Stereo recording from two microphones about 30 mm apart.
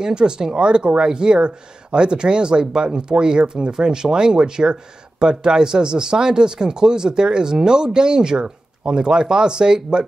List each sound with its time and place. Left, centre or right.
0.0 s speech: right